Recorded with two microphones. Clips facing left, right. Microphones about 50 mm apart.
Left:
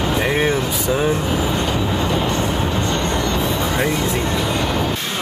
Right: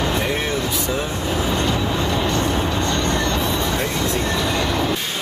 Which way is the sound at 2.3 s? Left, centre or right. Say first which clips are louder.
Even; left.